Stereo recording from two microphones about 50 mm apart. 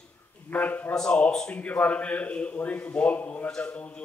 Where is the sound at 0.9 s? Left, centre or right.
Centre.